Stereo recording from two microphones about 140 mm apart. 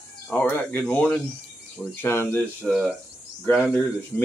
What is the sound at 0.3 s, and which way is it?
Speech, 10° left (ahead or behind).